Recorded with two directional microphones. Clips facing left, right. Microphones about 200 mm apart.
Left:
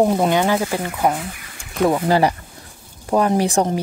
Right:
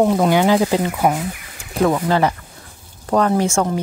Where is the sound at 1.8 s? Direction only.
10° left (ahead or behind).